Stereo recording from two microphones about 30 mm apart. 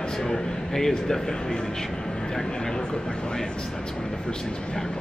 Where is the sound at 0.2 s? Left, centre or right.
Centre.